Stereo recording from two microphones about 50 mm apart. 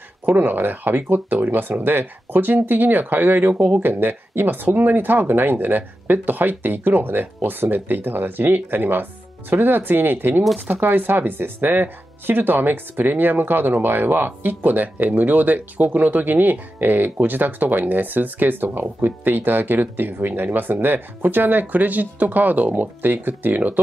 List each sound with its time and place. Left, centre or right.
0.2 s speech: right